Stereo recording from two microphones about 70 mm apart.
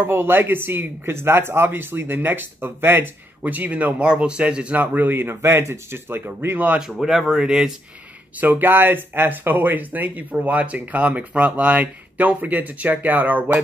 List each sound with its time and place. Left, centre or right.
0.0 s speech: right
6.8 s speech: centre
8.4 s speech: right